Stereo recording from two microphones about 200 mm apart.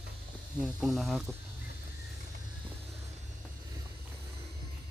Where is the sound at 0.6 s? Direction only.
Centre (ahead or behind).